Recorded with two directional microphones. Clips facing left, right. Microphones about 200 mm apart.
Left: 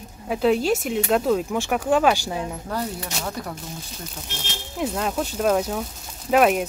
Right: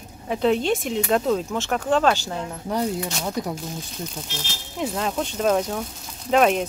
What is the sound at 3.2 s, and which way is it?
Speech, 15° right (ahead or behind).